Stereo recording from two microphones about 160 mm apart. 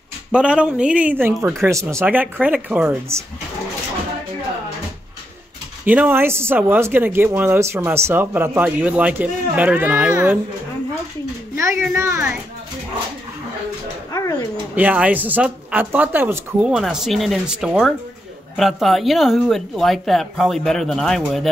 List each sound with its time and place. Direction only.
0.3 s speech: 5° right (ahead or behind)
5.9 s speech: 10° right (ahead or behind)
11.5 s speech: 15° right (ahead or behind)
14.8 s speech: 10° right (ahead or behind)